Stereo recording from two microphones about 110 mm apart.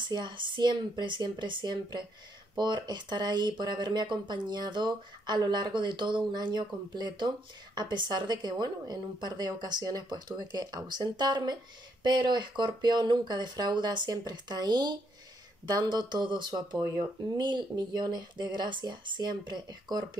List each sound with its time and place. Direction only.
0.1 s speech: 45° right (ahead or behind)